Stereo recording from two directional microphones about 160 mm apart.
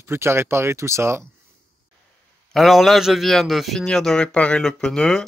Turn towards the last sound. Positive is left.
turn(degrees=5)  # may be behind; listen again after turning